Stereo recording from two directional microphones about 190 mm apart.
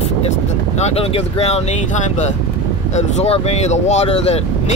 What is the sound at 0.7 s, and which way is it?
Speech, 35° left (ahead or behind).